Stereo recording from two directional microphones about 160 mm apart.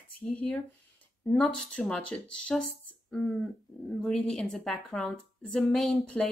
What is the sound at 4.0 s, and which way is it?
Speech, centre (ahead or behind).